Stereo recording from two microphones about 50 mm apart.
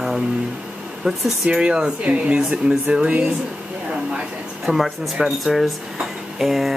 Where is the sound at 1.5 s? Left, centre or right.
Centre.